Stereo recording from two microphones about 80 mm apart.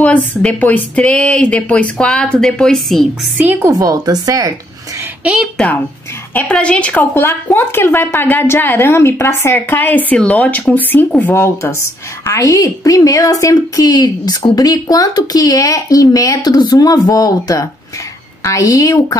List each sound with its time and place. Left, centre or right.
0.0 s a woman's voice: centre
3.3 s a woman's voice: right
3.6 s speech: right
5.2 s a woman's voice: centre
6.5 s a woman's voice: centre; by 9.8 s left
9.8 s a woman's voice: left
11.3 s a woman's voice: left